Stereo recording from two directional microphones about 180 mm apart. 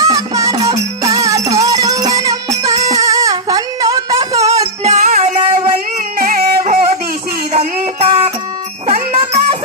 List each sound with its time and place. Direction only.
0.0 s music: 20° right (ahead or behind)
4.8 s music: 40° right (ahead or behind)
6.1 s music: 55° right (ahead or behind)
7.5 s music: 35° right (ahead or behind)